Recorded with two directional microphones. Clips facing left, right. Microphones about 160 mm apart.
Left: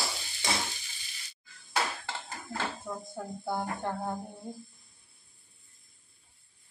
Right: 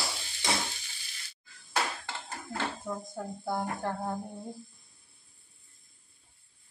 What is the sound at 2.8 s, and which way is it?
A woman's voice, centre (ahead or behind).